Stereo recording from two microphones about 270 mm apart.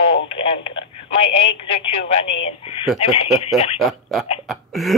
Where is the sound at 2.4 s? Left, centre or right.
Left.